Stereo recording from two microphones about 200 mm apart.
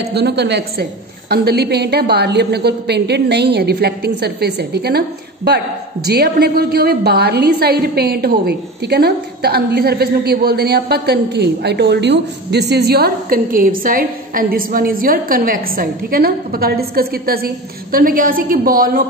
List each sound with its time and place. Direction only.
0.1 s a woman's voice: 55° right (ahead or behind)